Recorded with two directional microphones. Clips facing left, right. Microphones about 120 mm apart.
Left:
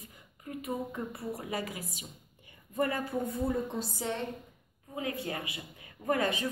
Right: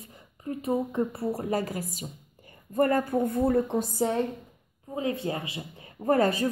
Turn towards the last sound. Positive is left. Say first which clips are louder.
# right 7 dB
turn(degrees=-40)  # may be behind; listen again after turning